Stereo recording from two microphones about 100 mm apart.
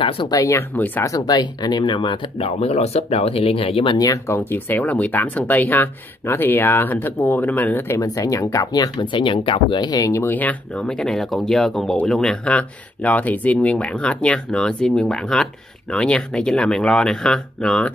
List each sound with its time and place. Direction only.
0.3 s speech: 30° left (ahead or behind)
0.7 s speech: 20° left (ahead or behind)
1.0 s speech: 40° left (ahead or behind); by 4.0 s 65° left (ahead or behind)
4.0 s speech: 30° left (ahead or behind)
8.0 s speech: 35° left (ahead or behind)
10.2 s speech: 15° left (ahead or behind)